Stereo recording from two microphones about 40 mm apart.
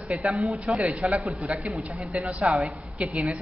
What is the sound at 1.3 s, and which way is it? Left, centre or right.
A woman's voice, right.